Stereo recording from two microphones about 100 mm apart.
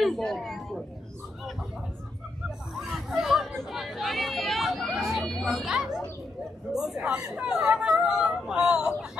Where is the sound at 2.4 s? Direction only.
5° right (ahead or behind).